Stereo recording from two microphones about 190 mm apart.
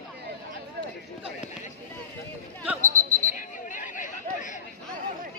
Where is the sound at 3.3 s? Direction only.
45° left (ahead or behind).